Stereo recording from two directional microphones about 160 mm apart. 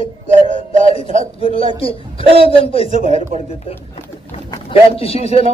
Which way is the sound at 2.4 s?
35° left (ahead or behind).